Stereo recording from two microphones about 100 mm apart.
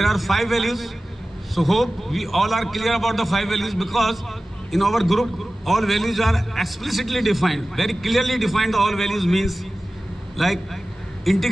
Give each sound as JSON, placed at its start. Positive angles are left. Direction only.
{"t": 0.0, "sound": "a man's voice", "side_deg": 0}